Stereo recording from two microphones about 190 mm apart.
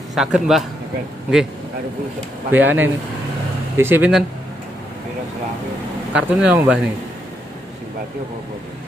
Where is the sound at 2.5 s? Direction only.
10° right (ahead or behind).